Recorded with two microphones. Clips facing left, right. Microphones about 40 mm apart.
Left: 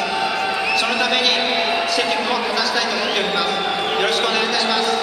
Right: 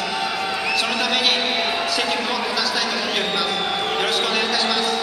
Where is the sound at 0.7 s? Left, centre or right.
Centre.